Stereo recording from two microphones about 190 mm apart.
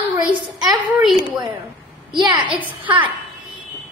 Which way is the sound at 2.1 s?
25° right (ahead or behind).